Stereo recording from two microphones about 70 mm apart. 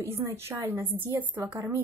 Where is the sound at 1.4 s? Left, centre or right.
Right.